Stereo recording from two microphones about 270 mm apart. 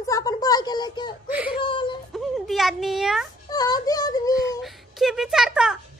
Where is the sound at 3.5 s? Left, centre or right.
Centre.